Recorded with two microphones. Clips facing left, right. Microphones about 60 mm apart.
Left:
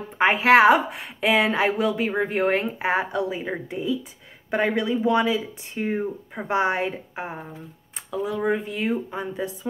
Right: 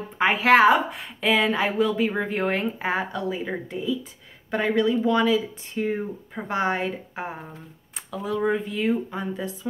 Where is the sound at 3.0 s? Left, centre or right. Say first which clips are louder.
Left 2 dB; centre.